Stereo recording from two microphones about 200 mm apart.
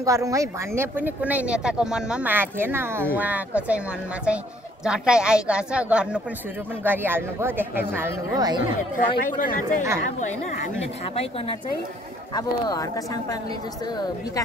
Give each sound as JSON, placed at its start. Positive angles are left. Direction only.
{"t": 0.0, "sound": "a woman's voice", "side_deg": -15}
{"t": 8.9, "sound": "speech", "side_deg": 45}
{"t": 12.4, "sound": "speech", "side_deg": 20}